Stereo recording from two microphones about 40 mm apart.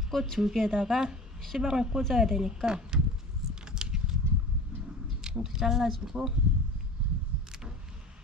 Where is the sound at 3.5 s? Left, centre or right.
Centre.